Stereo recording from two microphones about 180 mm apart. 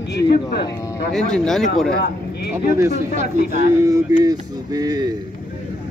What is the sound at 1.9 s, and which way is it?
Speech, 60° left (ahead or behind).